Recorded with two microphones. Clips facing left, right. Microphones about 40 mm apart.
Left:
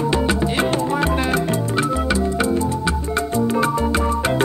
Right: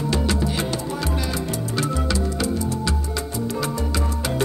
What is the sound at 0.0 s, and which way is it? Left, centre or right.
Music, left.